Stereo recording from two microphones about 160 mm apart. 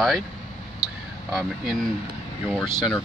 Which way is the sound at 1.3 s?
Centre (ahead or behind).